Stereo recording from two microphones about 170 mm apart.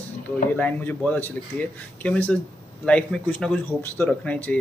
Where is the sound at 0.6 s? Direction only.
10° left (ahead or behind).